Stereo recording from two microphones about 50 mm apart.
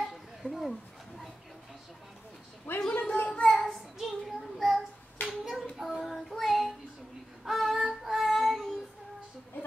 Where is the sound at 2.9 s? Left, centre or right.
Left.